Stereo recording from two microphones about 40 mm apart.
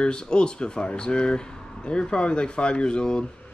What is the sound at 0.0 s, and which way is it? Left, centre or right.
Speech, left.